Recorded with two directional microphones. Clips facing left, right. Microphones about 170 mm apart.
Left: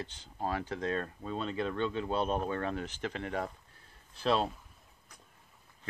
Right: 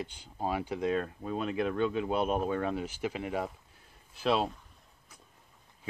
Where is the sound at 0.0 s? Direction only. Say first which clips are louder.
Right 2 dB; 10° right (ahead or behind).